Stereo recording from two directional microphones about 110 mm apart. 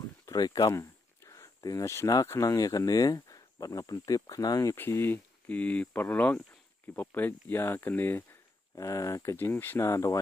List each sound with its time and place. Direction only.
0.2 s speech: 35° left (ahead or behind)
4.7 s speech: 20° left (ahead or behind)